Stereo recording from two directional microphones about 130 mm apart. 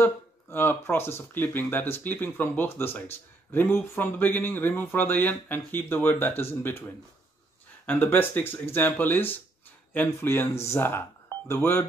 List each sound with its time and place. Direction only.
0.0 s speech: 15° left (ahead or behind)
7.8 s speech: 15° left (ahead or behind)